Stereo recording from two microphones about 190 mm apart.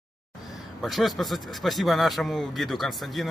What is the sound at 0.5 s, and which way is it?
A man's voice, centre (ahead or behind).